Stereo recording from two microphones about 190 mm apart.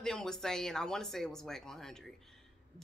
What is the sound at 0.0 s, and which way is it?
A woman's voice, 5° left (ahead or behind).